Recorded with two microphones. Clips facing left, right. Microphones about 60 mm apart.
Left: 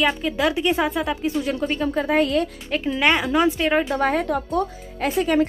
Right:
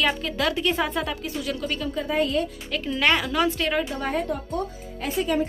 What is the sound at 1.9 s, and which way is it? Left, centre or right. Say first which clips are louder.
Speech: left 4 dB; left.